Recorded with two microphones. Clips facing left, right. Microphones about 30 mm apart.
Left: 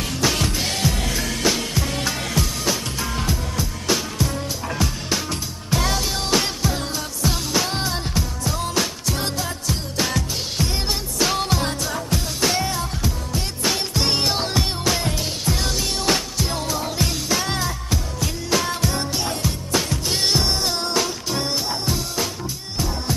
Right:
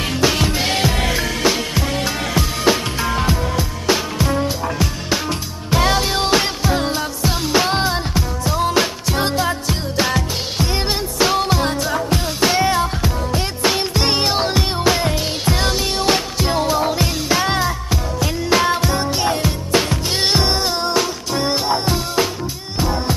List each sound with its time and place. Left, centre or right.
0.2 s music: right
1.2 s music: centre
2.6 s music: right
4.6 s music: centre
5.7 s music: right
12.6 s music: right
13.6 s music: right
19.2 s music: right
20.6 s music: centre
21.5 s music: right